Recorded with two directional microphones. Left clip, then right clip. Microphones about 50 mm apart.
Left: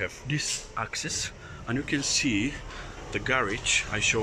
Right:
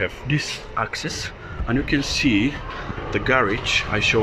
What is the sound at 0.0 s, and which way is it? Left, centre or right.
Speech, left.